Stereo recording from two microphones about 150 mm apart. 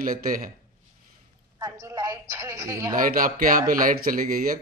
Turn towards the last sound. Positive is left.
turn(degrees=-70)  # may be behind; listen again after turning